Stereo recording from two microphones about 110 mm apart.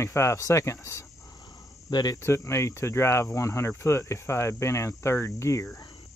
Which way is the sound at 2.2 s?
25° left (ahead or behind).